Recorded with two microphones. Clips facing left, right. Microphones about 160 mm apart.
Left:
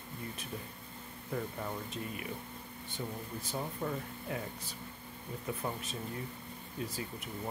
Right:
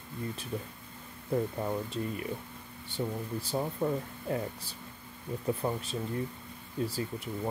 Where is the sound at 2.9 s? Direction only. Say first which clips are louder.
Right 7 dB; 30° right (ahead or behind).